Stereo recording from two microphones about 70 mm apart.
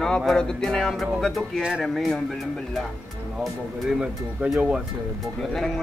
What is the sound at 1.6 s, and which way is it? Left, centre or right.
Speech, centre.